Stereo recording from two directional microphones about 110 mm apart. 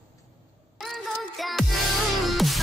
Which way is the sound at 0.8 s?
Centre (ahead or behind).